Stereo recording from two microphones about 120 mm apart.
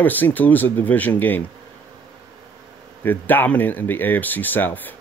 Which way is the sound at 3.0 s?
15° left (ahead or behind).